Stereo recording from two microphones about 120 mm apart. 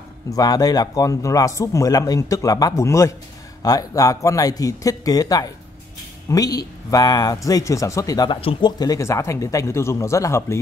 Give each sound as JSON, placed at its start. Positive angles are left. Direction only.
{"t": 0.3, "sound": "speech", "side_deg": 30}
{"t": 8.3, "sound": "speech", "side_deg": 45}